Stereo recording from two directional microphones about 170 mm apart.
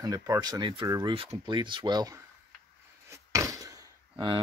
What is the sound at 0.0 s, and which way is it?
Speech, 20° right (ahead or behind).